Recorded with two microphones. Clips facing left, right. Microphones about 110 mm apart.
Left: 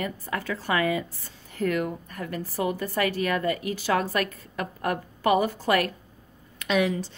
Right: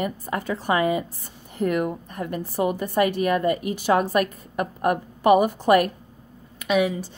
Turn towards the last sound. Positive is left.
turn(degrees=-10)  # may be behind; listen again after turning